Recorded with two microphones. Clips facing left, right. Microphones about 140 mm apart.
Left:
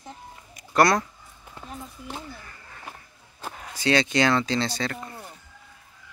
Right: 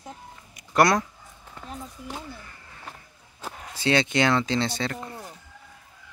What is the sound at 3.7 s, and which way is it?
Speech, 25° right (ahead or behind).